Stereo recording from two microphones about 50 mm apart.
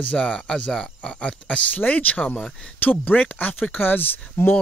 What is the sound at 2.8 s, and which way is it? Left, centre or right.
Speech, left.